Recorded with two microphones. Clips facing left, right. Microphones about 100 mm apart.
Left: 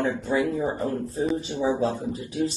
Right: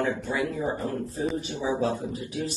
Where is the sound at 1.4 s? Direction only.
30° left (ahead or behind).